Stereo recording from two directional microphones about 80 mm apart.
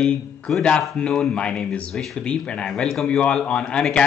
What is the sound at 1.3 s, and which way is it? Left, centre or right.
Speech, centre.